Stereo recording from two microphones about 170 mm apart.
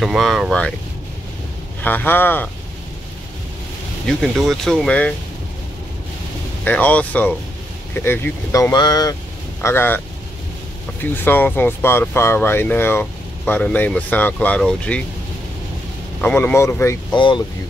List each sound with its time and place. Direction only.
0.0 s speech: centre (ahead or behind)
1.8 s speech: 10° left (ahead or behind)
4.2 s speech: centre (ahead or behind)
6.6 s speech: 10° left (ahead or behind)
16.2 s speech: 10° left (ahead or behind)
17.1 s speech: 30° left (ahead or behind)